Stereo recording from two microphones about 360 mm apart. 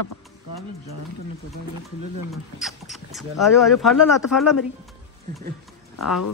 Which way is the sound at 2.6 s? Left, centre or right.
Centre.